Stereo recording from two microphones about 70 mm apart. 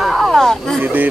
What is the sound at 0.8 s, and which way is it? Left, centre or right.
Speech, right.